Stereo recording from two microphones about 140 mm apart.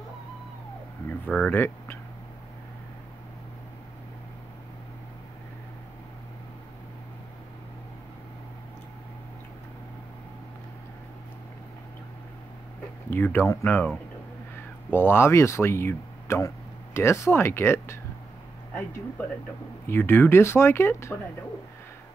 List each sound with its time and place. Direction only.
1.2 s speech: 10° left (ahead or behind)
13.1 s speech: 15° left (ahead or behind)
19.9 s speech: 15° left (ahead or behind)